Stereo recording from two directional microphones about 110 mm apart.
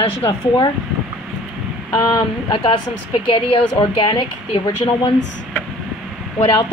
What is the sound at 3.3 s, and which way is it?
A woman's voice, 55° left (ahead or behind).